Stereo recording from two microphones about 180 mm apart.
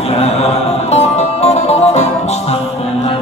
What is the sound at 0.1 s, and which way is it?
Music, 35° left (ahead or behind).